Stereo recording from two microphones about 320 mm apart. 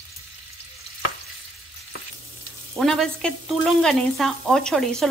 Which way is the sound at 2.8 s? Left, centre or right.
Centre.